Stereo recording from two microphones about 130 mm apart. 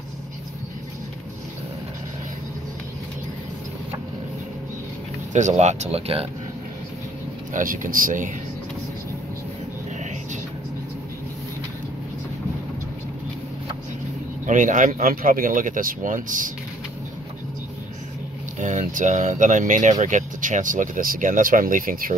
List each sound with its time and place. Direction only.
5.3 s speech: 65° right (ahead or behind); by 6.2 s 50° right (ahead or behind)
7.5 s speech: 90° right
14.4 s speech: 80° right
18.6 s speech: 70° right (ahead or behind); by 22.1 s 90° right